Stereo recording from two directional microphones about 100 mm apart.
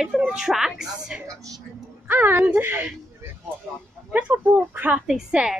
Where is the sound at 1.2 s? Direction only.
35° right (ahead or behind).